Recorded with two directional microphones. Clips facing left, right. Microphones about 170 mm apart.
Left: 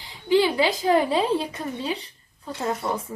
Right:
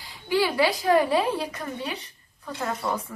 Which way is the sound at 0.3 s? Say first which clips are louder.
Left 3 dB; 20° left (ahead or behind).